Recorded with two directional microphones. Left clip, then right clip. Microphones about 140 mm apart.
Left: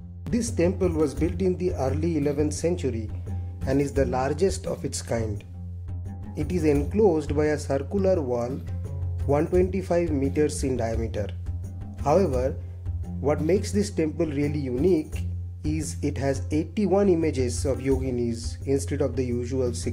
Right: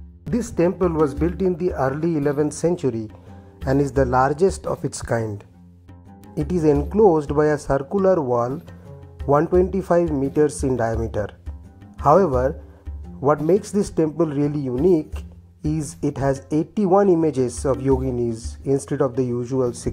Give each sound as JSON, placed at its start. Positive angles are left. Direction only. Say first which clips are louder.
{"t": 0.3, "sound": "speech", "louder": "right 4 dB", "side_deg": -20}
{"t": 2.4, "sound": "speech", "louder": "right 5 dB", "side_deg": -35}
{"t": 6.3, "sound": "speech", "louder": "right 5 dB", "side_deg": -35}
{"t": 12.0, "sound": "speech", "louder": "right 7 dB", "side_deg": -35}
{"t": 13.5, "sound": "speech", "louder": "right 5 dB", "side_deg": -30}